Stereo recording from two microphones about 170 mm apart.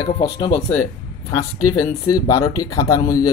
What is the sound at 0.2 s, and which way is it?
Speech, 25° left (ahead or behind).